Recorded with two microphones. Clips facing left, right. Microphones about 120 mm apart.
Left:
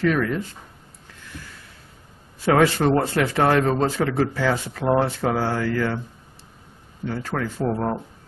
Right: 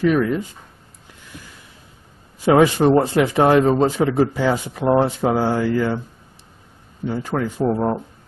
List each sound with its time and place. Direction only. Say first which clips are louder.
0.0 s a man's voice: right 4 dB; 15° right (ahead or behind)
1.3 s a sound: even; 15° right (ahead or behind)
2.4 s a man's voice: right 4 dB; 15° right (ahead or behind)
7.1 s a man's voice: right 4 dB; 15° right (ahead or behind)